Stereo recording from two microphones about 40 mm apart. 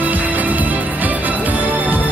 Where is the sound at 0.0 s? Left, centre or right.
Right.